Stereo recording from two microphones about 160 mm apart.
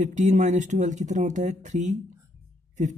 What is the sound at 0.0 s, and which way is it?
Speech, 50° right (ahead or behind).